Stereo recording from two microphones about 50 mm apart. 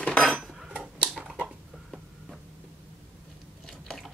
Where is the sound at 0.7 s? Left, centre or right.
Right.